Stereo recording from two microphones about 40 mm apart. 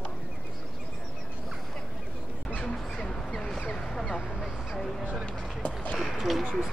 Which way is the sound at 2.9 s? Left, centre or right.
Centre.